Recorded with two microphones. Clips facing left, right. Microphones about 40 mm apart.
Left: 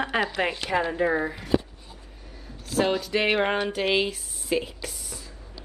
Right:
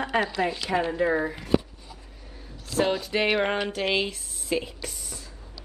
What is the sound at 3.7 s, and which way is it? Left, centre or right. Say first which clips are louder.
A woman's voice: left 2 dB; centre.